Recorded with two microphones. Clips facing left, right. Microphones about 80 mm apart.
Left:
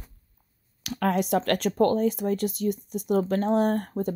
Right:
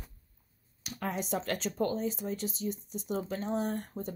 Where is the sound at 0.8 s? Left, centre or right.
Left.